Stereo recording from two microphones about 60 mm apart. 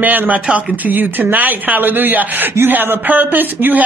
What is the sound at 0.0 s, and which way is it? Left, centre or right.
Speech, right.